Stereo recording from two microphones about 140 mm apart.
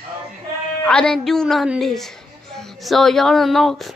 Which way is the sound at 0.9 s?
5° left (ahead or behind).